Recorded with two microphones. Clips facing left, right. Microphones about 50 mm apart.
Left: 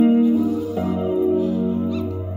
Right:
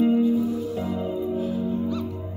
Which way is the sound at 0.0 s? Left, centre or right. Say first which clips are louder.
Left 5 dB; left.